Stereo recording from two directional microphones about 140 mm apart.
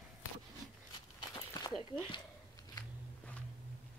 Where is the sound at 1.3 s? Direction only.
30° left (ahead or behind).